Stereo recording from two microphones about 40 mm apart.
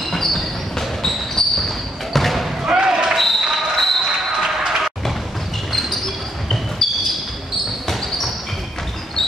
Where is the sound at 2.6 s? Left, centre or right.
Centre.